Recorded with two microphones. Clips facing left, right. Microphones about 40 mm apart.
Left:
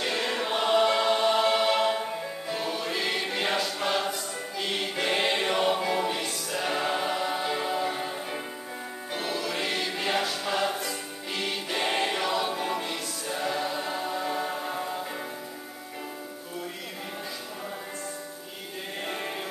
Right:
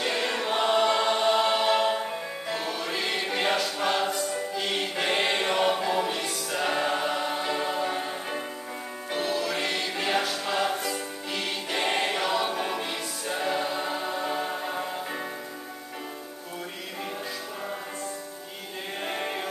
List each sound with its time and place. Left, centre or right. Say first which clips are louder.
0.0 s choir: right 1 dB; centre
12.5 s music: even; centre
19.0 s sheep: right 3 dB; centre